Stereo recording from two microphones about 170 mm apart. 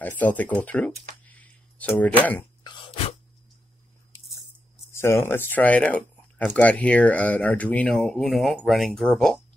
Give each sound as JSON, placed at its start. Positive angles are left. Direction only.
{"t": 0.0, "sound": "speech", "side_deg": 10}
{"t": 2.6, "sound": "a sound", "side_deg": 30}
{"t": 4.9, "sound": "speech", "side_deg": 15}